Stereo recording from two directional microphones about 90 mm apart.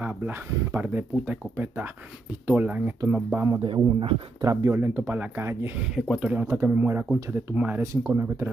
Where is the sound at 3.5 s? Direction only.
65° right (ahead or behind).